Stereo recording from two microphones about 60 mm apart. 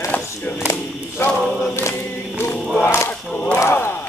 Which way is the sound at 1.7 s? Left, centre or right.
Left.